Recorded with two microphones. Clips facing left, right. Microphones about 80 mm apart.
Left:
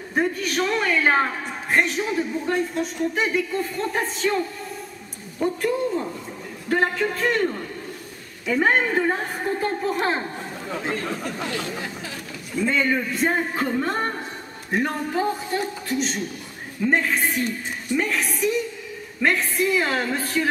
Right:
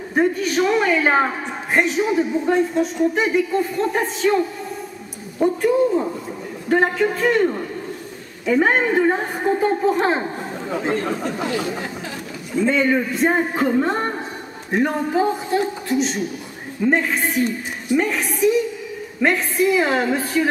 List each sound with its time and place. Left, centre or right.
0.1 s a woman's voice: centre
13.3 s a woman's voice: centre